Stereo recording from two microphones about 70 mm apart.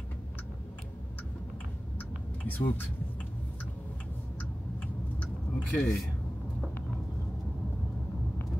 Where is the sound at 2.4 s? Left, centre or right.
Left.